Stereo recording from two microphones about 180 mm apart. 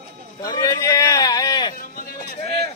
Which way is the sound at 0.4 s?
20° left (ahead or behind).